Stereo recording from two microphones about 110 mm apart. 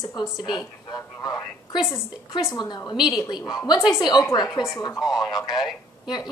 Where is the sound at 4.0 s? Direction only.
40° left (ahead or behind).